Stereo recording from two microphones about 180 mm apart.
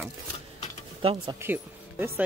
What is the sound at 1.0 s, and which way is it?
Speech, 30° right (ahead or behind).